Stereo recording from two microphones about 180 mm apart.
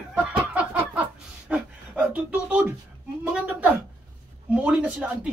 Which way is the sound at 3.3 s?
5° right (ahead or behind).